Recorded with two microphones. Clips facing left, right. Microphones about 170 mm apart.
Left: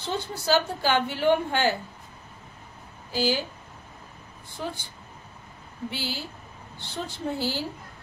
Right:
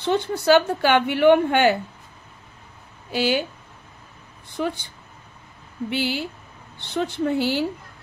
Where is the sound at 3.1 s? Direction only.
65° right (ahead or behind).